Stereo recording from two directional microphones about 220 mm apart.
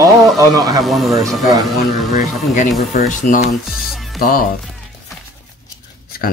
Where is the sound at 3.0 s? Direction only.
35° left (ahead or behind).